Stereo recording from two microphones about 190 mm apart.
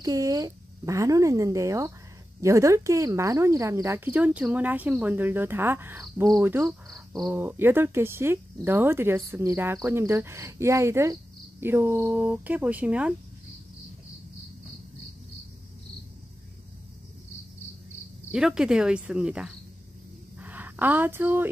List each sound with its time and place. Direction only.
0.0 s speech: 20° right (ahead or behind)
6.4 s cricket: 10° right (ahead or behind)
7.3 s speech: 10° right (ahead or behind)
18.3 s speech: 5° right (ahead or behind)
20.3 s a sound: 10° right (ahead or behind)